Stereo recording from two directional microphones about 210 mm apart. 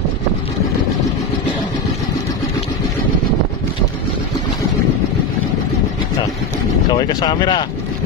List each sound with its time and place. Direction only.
6.9 s speech: 20° left (ahead or behind)